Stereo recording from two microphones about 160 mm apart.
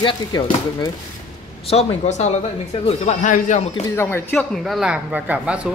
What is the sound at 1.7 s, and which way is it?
Speech, 45° left (ahead or behind).